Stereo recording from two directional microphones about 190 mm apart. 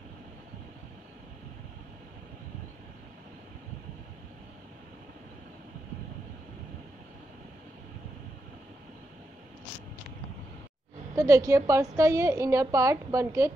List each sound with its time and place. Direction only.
11.1 s a woman's voice: 15° right (ahead or behind)